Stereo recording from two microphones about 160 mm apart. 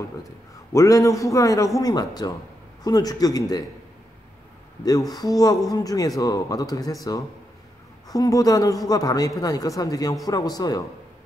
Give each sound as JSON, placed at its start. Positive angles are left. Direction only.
{"t": 0.7, "sound": "speech", "side_deg": 20}
{"t": 5.1, "sound": "speech", "side_deg": 25}